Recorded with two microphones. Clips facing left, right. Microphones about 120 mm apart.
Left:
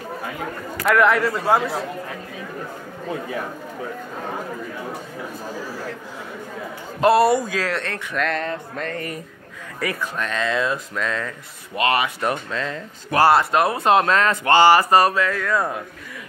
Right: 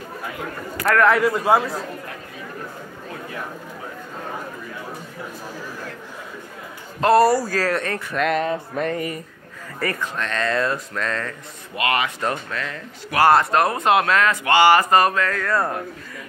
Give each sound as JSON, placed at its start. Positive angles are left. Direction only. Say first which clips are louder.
{"t": 0.7, "sound": "a man's voice", "louder": "even", "side_deg": 0}
{"t": 7.0, "sound": "a man's voice", "louder": "even", "side_deg": 15}
{"t": 7.2, "sound": "speech", "louder": "right 1 dB", "side_deg": -5}
{"t": 9.8, "sound": "music", "louder": "even", "side_deg": 0}
{"t": 11.7, "sound": "speech", "louder": "left 2 dB", "side_deg": 20}
{"t": 14.8, "sound": "a sound", "louder": "left 1 dB", "side_deg": 15}
{"t": 15.2, "sound": "music", "louder": "even", "side_deg": 0}